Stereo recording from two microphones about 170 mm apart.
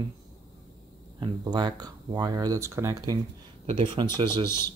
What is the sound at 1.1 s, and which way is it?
Speech, 25° right (ahead or behind).